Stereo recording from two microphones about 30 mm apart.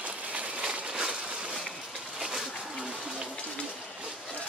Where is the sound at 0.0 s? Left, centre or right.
Right.